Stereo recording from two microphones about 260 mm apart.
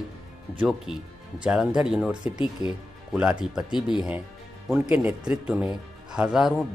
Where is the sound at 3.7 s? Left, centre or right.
Centre.